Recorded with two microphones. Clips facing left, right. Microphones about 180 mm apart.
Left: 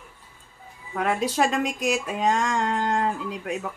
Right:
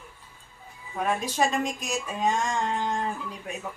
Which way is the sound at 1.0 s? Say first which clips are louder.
Left 3 dB; 80° left.